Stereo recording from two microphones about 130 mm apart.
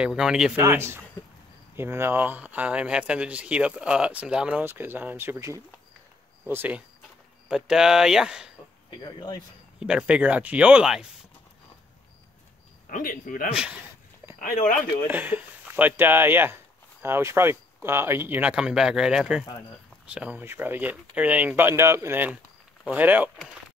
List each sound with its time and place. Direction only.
0.0 s speech: 5° right (ahead or behind)
0.6 s speech: 20° right (ahead or behind)
7.4 s speech: 5° right (ahead or behind)
9.0 s speech: 30° left (ahead or behind)
9.8 s speech: 5° right (ahead or behind)
12.8 s speech: 90° left
13.5 s speech: 5° right (ahead or behind)
14.4 s speech: 85° left
15.0 s speech: 15° right (ahead or behind)